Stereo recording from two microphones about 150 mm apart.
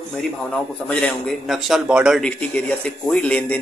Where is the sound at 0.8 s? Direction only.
5° left (ahead or behind).